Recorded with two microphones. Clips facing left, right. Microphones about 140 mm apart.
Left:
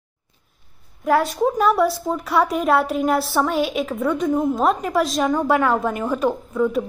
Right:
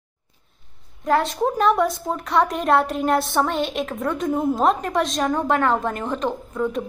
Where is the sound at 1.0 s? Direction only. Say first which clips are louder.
Left 2 dB; centre (ahead or behind).